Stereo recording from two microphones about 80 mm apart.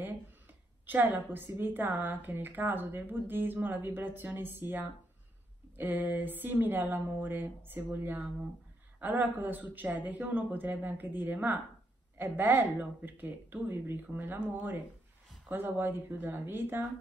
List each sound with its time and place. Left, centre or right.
0.8 s a woman's voice: right